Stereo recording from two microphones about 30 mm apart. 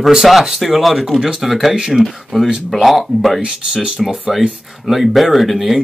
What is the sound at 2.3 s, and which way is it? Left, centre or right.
Speech, left.